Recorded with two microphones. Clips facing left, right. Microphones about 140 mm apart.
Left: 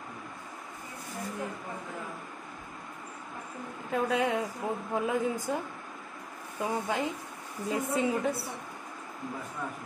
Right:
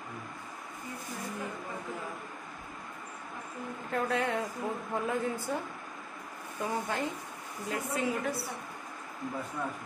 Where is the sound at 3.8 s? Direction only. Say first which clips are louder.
Left 3 dB; 15° left (ahead or behind).